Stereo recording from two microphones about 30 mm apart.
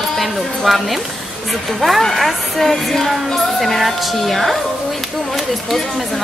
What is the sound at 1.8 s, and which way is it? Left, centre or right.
Speech, centre.